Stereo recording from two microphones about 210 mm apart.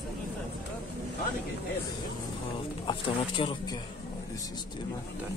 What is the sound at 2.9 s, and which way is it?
Speech, 25° left (ahead or behind).